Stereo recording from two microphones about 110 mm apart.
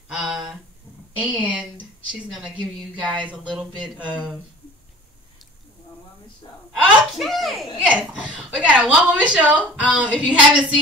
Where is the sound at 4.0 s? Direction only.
45° right (ahead or behind).